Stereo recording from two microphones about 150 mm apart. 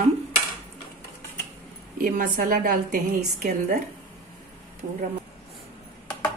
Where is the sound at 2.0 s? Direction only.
65° right (ahead or behind).